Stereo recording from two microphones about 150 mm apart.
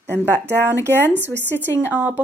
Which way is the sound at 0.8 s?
15° left (ahead or behind).